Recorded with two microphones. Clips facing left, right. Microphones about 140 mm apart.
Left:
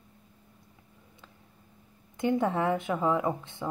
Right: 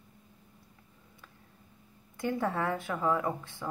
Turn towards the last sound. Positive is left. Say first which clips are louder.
# left 3 dB
turn(degrees=20)  # may be behind; listen again after turning